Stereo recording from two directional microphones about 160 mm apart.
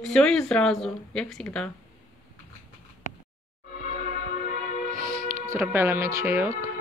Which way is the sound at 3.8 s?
60° left (ahead or behind).